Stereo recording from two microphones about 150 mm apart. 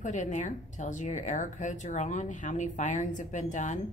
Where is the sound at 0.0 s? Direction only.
55° left (ahead or behind).